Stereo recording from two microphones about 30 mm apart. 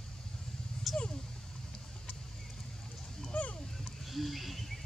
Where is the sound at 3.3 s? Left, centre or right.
Left.